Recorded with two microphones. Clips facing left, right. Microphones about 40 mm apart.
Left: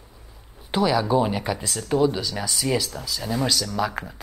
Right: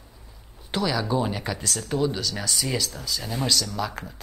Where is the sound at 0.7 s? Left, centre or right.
Centre.